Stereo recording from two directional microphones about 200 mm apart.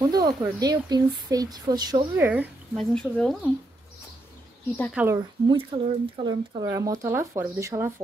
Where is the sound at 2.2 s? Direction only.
10° right (ahead or behind).